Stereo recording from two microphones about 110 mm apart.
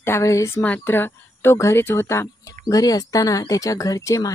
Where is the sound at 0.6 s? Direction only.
15° left (ahead or behind).